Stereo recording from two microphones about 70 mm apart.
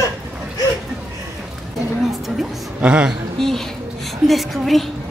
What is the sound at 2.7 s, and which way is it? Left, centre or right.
Speech, centre.